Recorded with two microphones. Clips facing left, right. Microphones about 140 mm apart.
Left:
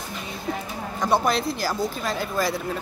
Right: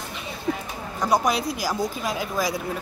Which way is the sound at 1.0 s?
10° right (ahead or behind).